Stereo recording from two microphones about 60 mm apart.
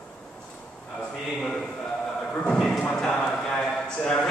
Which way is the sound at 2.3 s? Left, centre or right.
Centre.